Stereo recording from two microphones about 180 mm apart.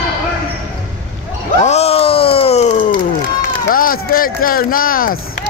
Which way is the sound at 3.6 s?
50° left (ahead or behind).